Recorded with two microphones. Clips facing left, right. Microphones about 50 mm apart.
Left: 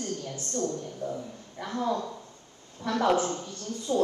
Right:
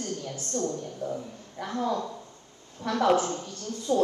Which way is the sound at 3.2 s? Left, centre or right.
Left.